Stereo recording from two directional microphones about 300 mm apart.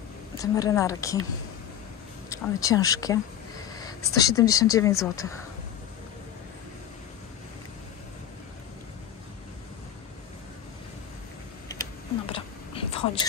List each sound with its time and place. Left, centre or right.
0.4 s speech: centre
2.2 s speech: centre
12.3 s whispering: centre